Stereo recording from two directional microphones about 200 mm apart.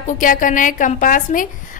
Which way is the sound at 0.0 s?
40° left (ahead or behind).